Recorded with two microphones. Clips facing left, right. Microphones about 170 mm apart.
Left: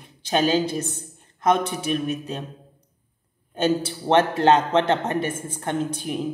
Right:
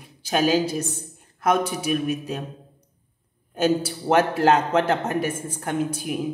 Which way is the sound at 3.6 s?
5° right (ahead or behind).